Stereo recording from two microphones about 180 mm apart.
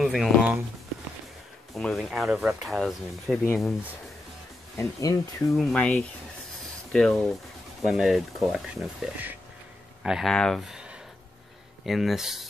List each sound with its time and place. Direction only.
0.0 s speech: centre (ahead or behind)
1.8 s speech: centre (ahead or behind)
4.7 s speech: 15° left (ahead or behind)
5.6 s speech: 5° left (ahead or behind)